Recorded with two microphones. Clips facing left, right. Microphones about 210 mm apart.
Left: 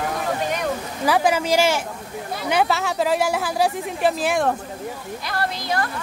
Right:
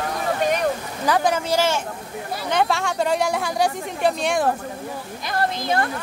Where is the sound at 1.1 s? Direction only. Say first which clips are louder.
Left 1 dB; 10° left (ahead or behind).